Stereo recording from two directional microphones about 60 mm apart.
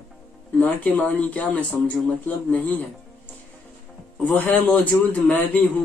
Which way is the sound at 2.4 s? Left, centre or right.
Left.